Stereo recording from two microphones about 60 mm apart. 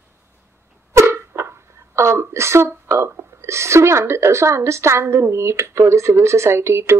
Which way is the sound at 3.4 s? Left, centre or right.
Right.